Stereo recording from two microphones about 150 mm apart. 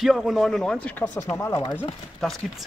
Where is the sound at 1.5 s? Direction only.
30° left (ahead or behind).